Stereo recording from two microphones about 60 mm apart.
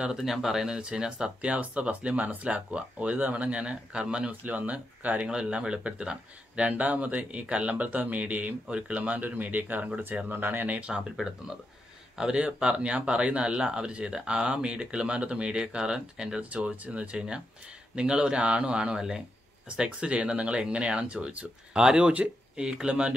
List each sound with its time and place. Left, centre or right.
0.0 s speech: centre
4.5 s speech: right
12.2 s speech: centre
16.4 s speech: right